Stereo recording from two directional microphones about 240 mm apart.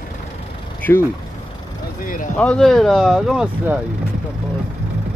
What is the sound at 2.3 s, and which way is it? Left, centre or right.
Speech, centre.